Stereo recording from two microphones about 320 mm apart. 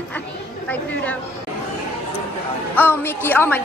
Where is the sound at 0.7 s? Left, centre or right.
Centre.